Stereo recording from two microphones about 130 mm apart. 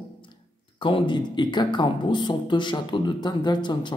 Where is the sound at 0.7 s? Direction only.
40° left (ahead or behind).